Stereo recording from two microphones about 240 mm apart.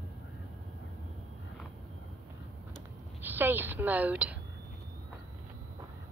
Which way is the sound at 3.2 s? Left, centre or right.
Centre.